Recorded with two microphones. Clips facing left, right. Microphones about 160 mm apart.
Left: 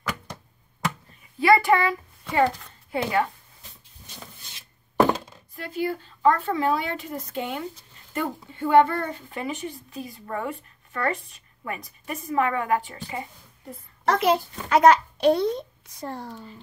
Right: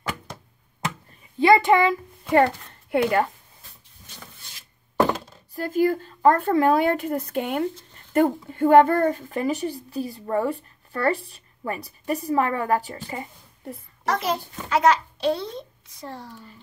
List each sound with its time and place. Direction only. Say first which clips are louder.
1.4 s a child's voice: right 2 dB; 20° right (ahead or behind)
2.3 s a child's voice: right 4 dB; 60° right (ahead or behind)
5.5 s a child's voice: right 7 dB; 40° right (ahead or behind)
14.0 s a child's voice: left 4 dB; 60° left (ahead or behind)